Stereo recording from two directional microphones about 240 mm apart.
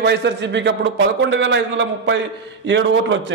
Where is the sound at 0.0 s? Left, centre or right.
Right.